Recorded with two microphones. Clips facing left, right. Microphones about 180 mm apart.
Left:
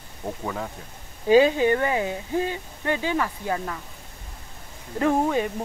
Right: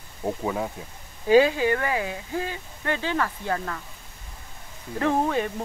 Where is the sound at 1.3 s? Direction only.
20° left (ahead or behind).